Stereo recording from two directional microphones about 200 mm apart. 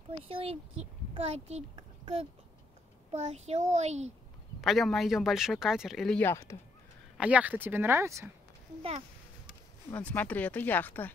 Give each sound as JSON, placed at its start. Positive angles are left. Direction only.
{"t": 0.3, "sound": "a child's voice", "side_deg": -30}
{"t": 4.6, "sound": "speech", "side_deg": 0}
{"t": 7.2, "sound": "speech", "side_deg": -5}
{"t": 9.8, "sound": "speech", "side_deg": 10}